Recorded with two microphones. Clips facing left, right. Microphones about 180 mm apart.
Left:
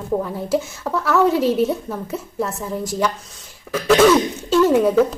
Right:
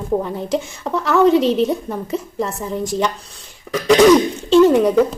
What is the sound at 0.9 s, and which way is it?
Speech, 20° right (ahead or behind).